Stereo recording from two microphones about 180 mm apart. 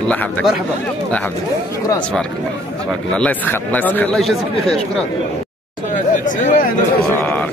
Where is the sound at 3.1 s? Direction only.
10° left (ahead or behind).